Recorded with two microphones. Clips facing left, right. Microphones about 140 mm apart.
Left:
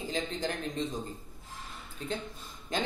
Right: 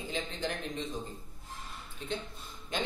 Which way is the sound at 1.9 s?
40° left (ahead or behind).